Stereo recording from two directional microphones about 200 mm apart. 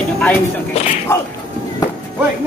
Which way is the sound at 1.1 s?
10° left (ahead or behind).